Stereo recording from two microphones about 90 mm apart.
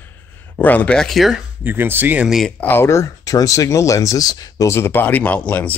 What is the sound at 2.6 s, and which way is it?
Speech, 25° left (ahead or behind).